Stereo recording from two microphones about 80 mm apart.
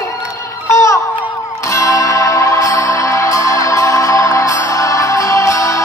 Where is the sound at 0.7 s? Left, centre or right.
Left.